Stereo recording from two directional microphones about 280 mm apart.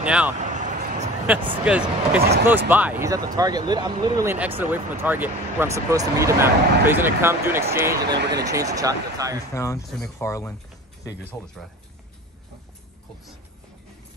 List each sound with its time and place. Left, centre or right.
0.0 s speech: centre
0.4 s a sound: right
1.6 s speech: centre
8.2 s speech: right
8.5 s speech: centre
9.5 s speech: centre